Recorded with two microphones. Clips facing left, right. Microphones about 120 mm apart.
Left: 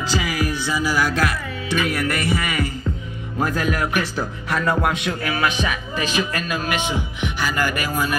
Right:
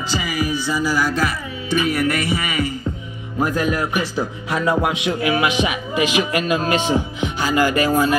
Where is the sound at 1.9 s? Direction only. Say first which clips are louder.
Right 3 dB; 45° left (ahead or behind).